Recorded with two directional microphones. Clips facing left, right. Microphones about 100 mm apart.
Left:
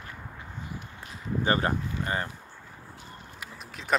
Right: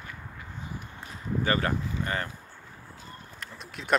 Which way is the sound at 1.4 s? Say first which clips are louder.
Left 2 dB; 25° left (ahead or behind).